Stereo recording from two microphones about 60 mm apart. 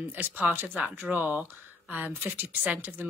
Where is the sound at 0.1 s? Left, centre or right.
Right.